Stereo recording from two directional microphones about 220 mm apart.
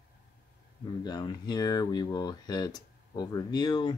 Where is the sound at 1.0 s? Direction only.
15° left (ahead or behind).